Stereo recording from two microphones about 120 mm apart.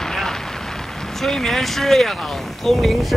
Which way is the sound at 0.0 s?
5° left (ahead or behind).